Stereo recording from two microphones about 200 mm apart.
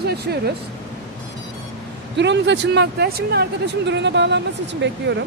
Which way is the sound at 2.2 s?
60° right (ahead or behind).